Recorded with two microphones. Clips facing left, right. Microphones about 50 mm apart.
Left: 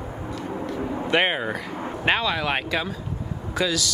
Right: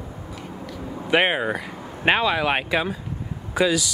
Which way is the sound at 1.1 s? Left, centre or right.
Centre.